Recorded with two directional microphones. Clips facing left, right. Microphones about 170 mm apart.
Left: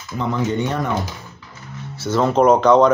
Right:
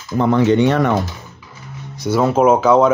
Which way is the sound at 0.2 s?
75° right (ahead or behind).